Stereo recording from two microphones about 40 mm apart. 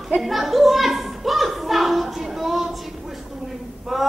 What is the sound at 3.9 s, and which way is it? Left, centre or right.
Male singing, centre.